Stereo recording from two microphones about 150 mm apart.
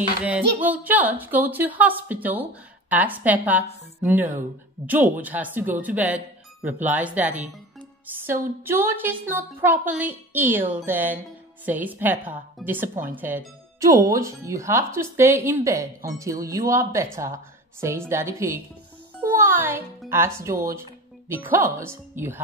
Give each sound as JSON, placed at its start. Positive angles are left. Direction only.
{"t": 0.2, "sound": "speech", "side_deg": -10}
{"t": 19.1, "sound": "music", "side_deg": -15}
{"t": 20.1, "sound": "speech", "side_deg": -15}